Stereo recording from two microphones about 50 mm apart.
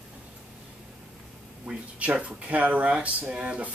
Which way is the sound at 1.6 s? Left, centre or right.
Right.